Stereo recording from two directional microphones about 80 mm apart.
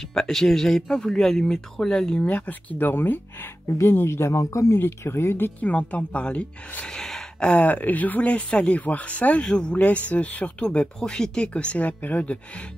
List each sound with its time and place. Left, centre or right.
0.1 s speech: centre; by 3.2 s left
3.6 s speech: left
3.9 s speech: left
5.6 s speech: centre